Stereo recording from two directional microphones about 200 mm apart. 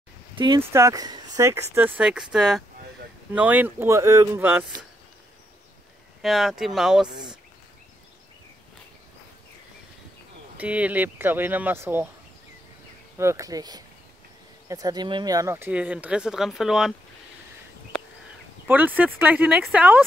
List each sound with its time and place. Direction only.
0.6 s speech: 15° right (ahead or behind)
6.2 s speech: centre (ahead or behind)
10.6 s speech: 5° right (ahead or behind)
13.2 s speech: 15° right (ahead or behind)
18.7 s speech: 10° right (ahead or behind)